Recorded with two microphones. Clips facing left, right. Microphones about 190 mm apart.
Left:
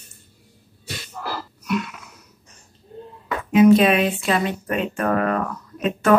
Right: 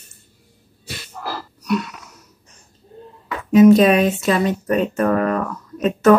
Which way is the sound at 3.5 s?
40° right (ahead or behind).